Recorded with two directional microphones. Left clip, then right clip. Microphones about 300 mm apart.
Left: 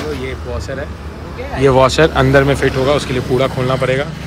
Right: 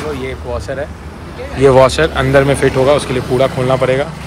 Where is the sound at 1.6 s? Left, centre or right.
Centre.